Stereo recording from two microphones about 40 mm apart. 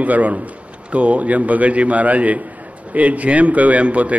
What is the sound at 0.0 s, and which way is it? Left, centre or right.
A man's voice, right.